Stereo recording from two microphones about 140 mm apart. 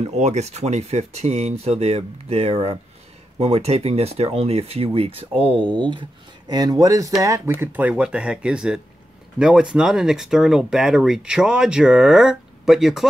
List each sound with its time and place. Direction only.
0.0 s speech: 55° right (ahead or behind); by 7.5 s 20° right (ahead or behind)
7.6 s speech: 10° right (ahead or behind)